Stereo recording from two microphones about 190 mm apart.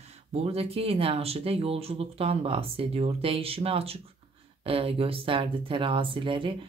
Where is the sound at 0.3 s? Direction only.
35° right (ahead or behind).